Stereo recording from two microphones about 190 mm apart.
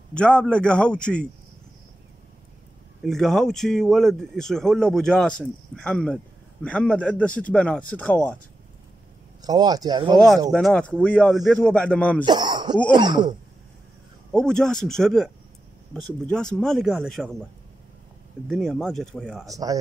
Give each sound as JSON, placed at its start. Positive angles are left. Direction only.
{"t": 0.1, "sound": "speech", "side_deg": 5}
{"t": 3.0, "sound": "a man's voice", "side_deg": 0}
{"t": 9.4, "sound": "speech", "side_deg": -20}
{"t": 10.1, "sound": "speech", "side_deg": 0}
{"t": 12.3, "sound": "cough", "side_deg": -25}
{"t": 12.9, "sound": "speech", "side_deg": -25}
{"t": 14.3, "sound": "speech", "side_deg": 5}
{"t": 18.5, "sound": "speech", "side_deg": 0}
{"t": 19.5, "sound": "speech", "side_deg": -20}